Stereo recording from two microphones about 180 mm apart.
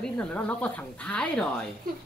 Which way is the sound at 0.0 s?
5° left (ahead or behind).